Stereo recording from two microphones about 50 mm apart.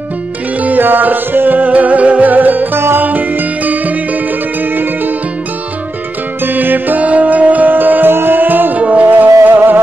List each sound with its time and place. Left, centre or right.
0.6 s music: right
6.4 s music: right